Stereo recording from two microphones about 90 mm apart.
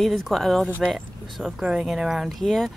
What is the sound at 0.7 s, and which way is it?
Speech, 15° right (ahead or behind).